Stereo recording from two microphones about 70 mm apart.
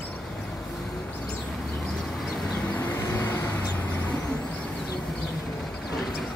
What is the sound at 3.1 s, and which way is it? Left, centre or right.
Vehicle, left.